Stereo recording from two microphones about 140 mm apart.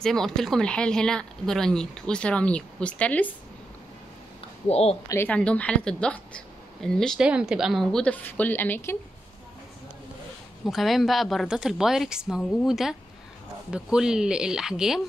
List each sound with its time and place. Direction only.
0.0 s speech: 5° left (ahead or behind)
4.6 s a woman's voice: 45° left (ahead or behind)
5.0 s a woman's voice: 15° left (ahead or behind)
7.2 s a woman's voice: 5° right (ahead or behind); by 8.9 s 15° left (ahead or behind)
10.6 s speech: centre (ahead or behind)